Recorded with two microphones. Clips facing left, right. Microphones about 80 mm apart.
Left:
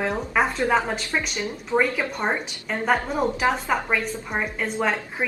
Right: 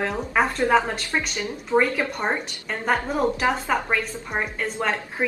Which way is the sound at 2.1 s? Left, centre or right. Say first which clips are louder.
Even; centre.